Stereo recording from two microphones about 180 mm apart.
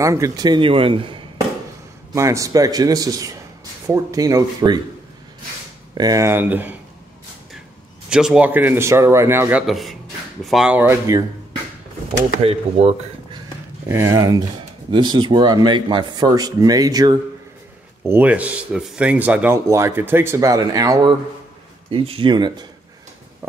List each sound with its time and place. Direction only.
0.0 s speech: 15° right (ahead or behind)
2.1 s speech: 15° right (ahead or behind)
5.9 s speech: 20° right (ahead or behind)
8.1 s speech: 5° right (ahead or behind)
12.1 s speech: 35° right (ahead or behind)
13.8 s speech: 15° right (ahead or behind)
18.0 s speech: 10° right (ahead or behind)
21.9 s speech: 30° right (ahead or behind)